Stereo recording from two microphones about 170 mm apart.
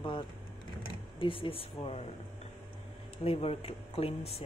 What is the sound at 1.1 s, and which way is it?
Speech, 30° left (ahead or behind).